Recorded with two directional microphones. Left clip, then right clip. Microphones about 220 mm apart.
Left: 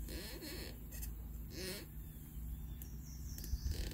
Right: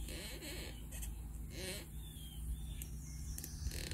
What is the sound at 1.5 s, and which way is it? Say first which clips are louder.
Vehicle: even; 20° left (ahead or behind).